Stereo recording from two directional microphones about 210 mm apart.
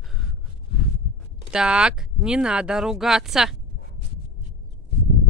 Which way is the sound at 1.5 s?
5° right (ahead or behind).